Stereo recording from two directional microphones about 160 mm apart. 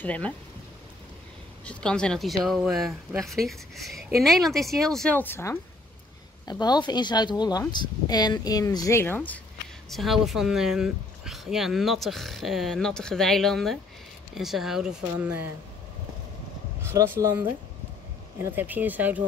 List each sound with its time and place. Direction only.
0.0 s speech: 10° left (ahead or behind)
1.7 s speech: 5° left (ahead or behind)
6.4 s speech: 25° left (ahead or behind)
9.8 s speech: centre (ahead or behind)
16.8 s speech: 15° right (ahead or behind)